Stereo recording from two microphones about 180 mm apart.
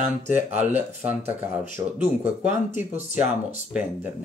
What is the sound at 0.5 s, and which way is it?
Speech, 10° right (ahead or behind).